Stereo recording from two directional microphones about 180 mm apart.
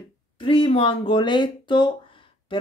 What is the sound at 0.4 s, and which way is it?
Speech, 30° left (ahead or behind).